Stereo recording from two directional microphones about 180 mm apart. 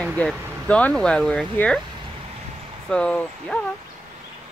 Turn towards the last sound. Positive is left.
turn(degrees=5)  # may be behind; listen again after turning